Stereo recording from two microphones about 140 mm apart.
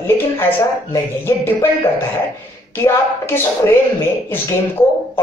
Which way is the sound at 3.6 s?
20° left (ahead or behind).